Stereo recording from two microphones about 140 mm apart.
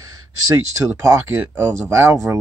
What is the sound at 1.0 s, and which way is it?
Speech, 20° right (ahead or behind).